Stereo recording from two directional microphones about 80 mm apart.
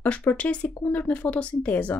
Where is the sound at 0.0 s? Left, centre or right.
Left.